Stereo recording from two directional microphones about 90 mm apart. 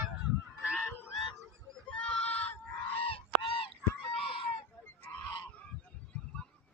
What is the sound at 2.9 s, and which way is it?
Fowl, 90° left.